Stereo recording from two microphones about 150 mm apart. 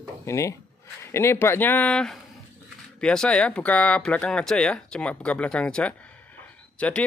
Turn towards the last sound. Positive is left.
turn(degrees=10)  # may be behind; listen again after turning